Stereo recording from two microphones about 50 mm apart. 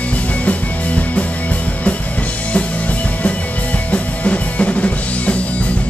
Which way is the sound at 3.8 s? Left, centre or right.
Left.